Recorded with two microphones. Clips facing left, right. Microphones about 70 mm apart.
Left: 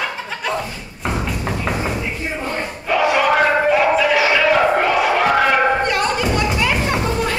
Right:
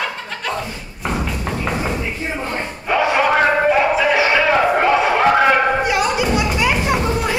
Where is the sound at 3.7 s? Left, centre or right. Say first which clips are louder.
Even; centre.